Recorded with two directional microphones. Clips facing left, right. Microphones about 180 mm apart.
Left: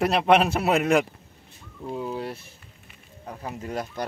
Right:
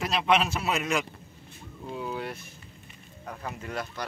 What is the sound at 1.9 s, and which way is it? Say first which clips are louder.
Speech: left 3 dB; 35° left (ahead or behind).